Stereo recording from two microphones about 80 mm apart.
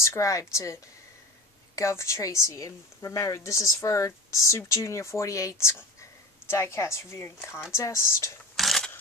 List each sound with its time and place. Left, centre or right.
0.0 s a woman's voice: left
1.8 s a woman's voice: left
8.5 s a sound: centre